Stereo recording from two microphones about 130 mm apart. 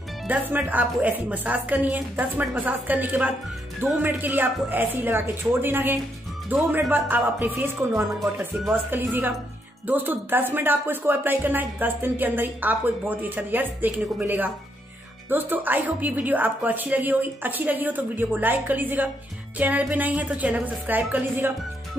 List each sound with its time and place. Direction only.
0.3 s a woman's voice: 15° right (ahead or behind)